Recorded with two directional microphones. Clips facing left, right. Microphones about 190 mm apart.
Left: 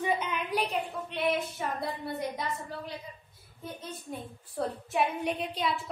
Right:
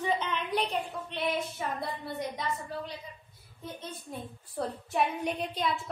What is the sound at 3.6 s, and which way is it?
A woman's voice, centre (ahead or behind).